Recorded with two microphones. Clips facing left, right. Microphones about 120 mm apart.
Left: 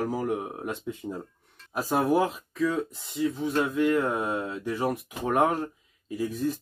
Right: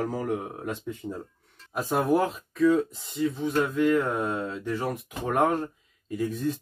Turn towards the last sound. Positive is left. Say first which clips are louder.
# even
turn(degrees=5)  # may be behind; listen again after turning